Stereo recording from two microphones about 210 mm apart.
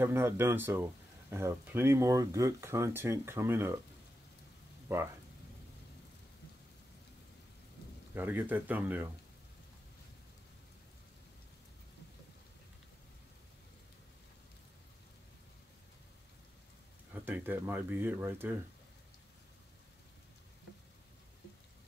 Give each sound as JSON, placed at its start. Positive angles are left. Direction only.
{"t": 0.0, "sound": "speech", "side_deg": -10}
{"t": 4.8, "sound": "speech", "side_deg": -10}
{"t": 8.1, "sound": "speech", "side_deg": -10}
{"t": 17.1, "sound": "speech", "side_deg": -10}